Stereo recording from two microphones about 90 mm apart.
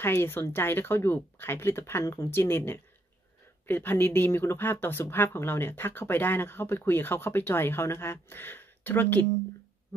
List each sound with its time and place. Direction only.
0.0 s speech: 25° left (ahead or behind)